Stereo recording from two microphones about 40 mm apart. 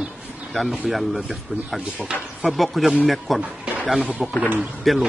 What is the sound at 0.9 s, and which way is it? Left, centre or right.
Speech, centre.